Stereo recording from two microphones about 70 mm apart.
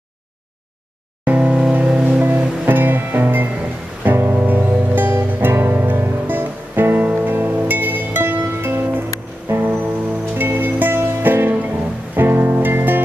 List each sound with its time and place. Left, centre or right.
1.2 s music: right